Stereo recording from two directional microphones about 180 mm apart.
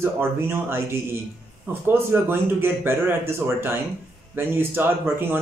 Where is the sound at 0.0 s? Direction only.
15° right (ahead or behind).